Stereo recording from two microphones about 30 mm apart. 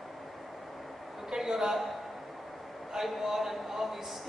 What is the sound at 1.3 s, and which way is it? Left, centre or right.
Speech, centre.